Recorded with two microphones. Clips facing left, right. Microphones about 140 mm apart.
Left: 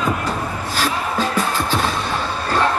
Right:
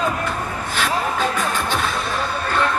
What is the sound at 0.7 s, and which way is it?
Music, 35° left (ahead or behind).